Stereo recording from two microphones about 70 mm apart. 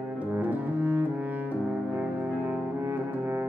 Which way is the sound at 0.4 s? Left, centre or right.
Right.